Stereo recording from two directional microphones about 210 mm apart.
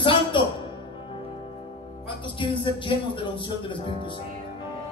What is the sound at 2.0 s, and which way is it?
Music, 25° left (ahead or behind).